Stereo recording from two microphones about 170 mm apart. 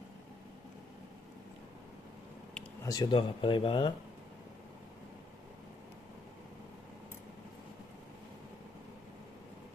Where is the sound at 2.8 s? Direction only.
25° left (ahead or behind).